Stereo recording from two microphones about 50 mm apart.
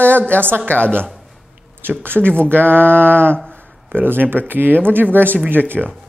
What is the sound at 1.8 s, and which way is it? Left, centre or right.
Speech, right.